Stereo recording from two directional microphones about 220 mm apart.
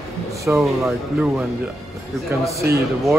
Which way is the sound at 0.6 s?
Centre (ahead or behind).